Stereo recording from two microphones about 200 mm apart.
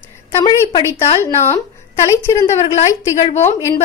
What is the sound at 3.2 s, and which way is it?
Speech, 35° left (ahead or behind).